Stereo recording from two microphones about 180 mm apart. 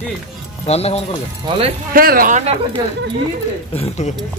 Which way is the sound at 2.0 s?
55° right (ahead or behind).